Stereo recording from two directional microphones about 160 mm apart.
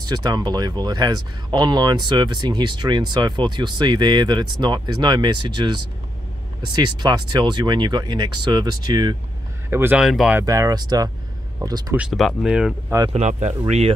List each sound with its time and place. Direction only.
0.0 s speech: 25° right (ahead or behind)
9.7 s speech: 15° right (ahead or behind)
10.0 s speech: centre (ahead or behind)
10.4 s speech: 20° right (ahead or behind)
12.0 s speech: centre (ahead or behind)
13.1 s speech: 45° right (ahead or behind)